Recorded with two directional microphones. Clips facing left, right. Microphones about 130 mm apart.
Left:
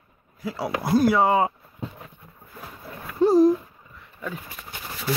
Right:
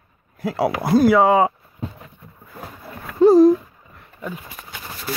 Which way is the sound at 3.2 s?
90° right.